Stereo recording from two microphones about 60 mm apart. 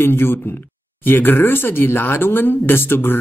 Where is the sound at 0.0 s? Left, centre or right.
Left.